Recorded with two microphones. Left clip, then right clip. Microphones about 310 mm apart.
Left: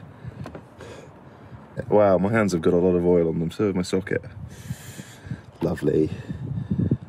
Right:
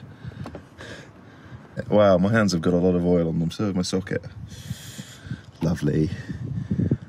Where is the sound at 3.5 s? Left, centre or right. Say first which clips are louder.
Left 3 dB; centre.